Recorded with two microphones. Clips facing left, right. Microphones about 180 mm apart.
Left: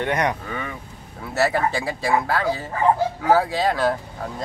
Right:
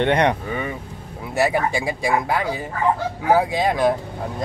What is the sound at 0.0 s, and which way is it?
Speech, 25° right (ahead or behind).